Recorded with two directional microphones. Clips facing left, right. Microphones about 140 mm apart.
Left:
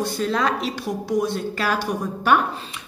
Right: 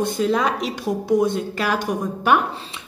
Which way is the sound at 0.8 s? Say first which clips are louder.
Right 5 dB; 25° right (ahead or behind).